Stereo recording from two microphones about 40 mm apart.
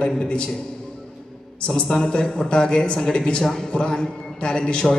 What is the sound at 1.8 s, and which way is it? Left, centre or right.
A man's voice, left.